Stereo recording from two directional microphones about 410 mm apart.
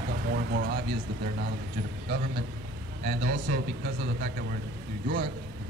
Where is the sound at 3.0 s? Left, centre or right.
Right.